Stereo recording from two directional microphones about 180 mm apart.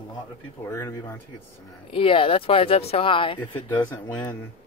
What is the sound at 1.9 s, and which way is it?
Speech, 30° left (ahead or behind).